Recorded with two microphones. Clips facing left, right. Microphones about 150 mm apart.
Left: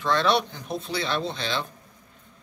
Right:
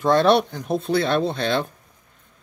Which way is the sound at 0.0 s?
50° right (ahead or behind).